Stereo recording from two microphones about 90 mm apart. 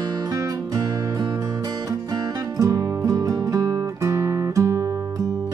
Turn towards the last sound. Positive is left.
turn(degrees=-35)  # may be behind; listen again after turning